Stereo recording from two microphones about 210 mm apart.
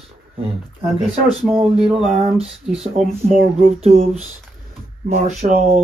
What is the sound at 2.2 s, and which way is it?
Speech, 30° right (ahead or behind).